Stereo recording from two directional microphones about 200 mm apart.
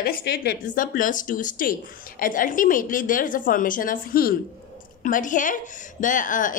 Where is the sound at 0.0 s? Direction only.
55° left (ahead or behind).